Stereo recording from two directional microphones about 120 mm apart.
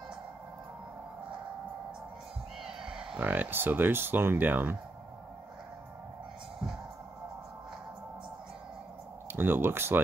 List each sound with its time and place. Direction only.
2.6 s speech: 10° right (ahead or behind)
9.3 s speech: 15° right (ahead or behind)